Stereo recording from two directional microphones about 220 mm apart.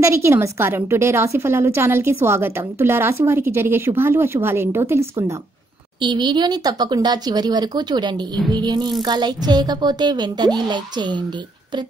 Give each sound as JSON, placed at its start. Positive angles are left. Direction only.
{"t": 0.0, "sound": "a woman's voice", "side_deg": -15}